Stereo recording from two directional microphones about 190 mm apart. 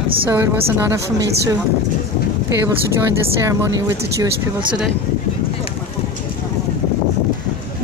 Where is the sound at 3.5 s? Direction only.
15° right (ahead or behind).